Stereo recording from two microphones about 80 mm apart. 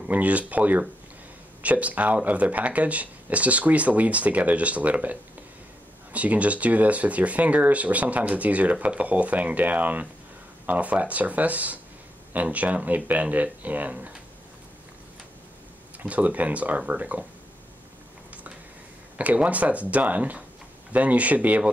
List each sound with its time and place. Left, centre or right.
0.0 s speech: centre
16.0 s speech: centre
19.1 s speech: centre